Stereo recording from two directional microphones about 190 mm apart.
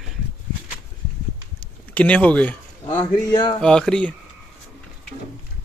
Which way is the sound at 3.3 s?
20° left (ahead or behind).